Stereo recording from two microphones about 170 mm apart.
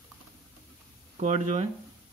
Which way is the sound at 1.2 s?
45° right (ahead or behind).